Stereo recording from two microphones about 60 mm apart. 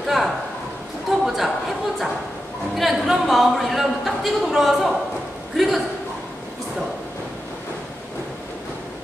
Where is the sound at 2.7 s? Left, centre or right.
Centre.